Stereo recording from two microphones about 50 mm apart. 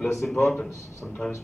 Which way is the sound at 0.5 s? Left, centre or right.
Left.